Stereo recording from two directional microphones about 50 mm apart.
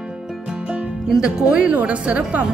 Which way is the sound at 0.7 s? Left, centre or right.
Centre.